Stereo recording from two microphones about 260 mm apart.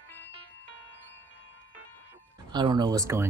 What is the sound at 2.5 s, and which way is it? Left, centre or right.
Speech, centre.